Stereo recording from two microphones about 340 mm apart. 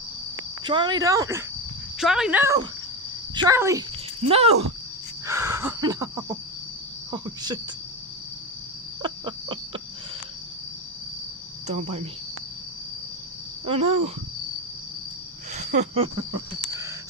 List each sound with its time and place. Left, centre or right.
0.7 s speech: centre
5.2 s a sound: centre
7.1 s speech: centre
9.0 s a sound: centre
11.6 s speech: centre
13.7 s speech: centre
15.5 s speech: right
16.2 s cricket: right